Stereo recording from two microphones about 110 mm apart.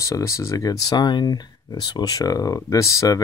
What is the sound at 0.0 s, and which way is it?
Speech, 30° left (ahead or behind).